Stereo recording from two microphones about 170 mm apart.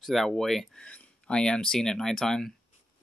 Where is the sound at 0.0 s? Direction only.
Centre (ahead or behind).